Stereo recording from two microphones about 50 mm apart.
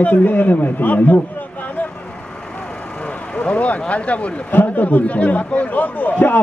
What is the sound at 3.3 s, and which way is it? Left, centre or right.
Speech, left.